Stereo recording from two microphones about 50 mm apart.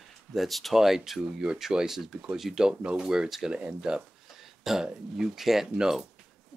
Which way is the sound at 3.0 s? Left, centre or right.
Centre.